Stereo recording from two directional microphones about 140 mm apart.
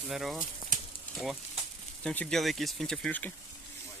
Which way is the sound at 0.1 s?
Centre (ahead or behind).